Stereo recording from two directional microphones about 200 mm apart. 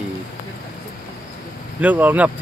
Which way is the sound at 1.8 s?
10° right (ahead or behind).